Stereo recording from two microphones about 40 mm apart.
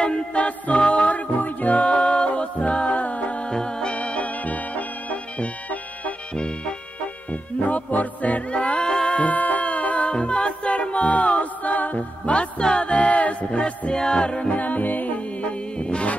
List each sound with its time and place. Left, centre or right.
0.0 s music: left
1.4 s music: left
3.4 s music: left
7.6 s music: left
12.4 s music: left
14.5 s music: left